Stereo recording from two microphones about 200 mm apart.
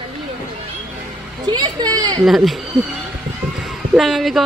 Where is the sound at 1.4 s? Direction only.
20° right (ahead or behind).